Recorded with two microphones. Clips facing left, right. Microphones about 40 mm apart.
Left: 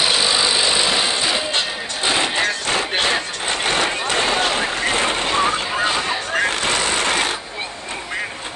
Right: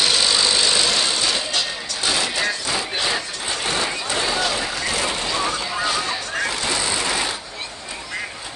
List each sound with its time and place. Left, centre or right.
0.0 s vehicle: centre
1.6 s music: left
2.7 s vehicle: left